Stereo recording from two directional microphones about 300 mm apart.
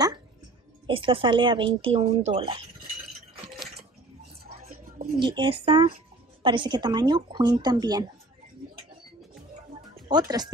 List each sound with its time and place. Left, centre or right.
0.8 s speech: centre
4.6 s bird: right
5.2 s speech: centre
10.0 s speech: centre